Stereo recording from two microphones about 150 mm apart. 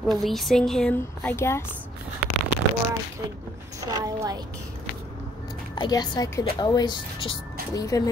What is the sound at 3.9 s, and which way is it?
Speech, 25° right (ahead or behind).